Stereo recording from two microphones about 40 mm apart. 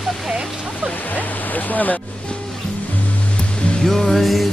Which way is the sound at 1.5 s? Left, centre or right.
Left.